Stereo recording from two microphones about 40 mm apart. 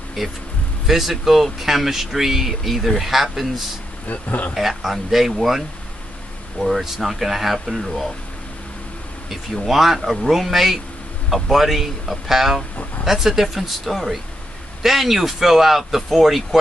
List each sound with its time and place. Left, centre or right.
0.2 s speech: centre
0.8 s speech: centre
4.1 s speech: left
4.6 s speech: centre
9.7 s speech: centre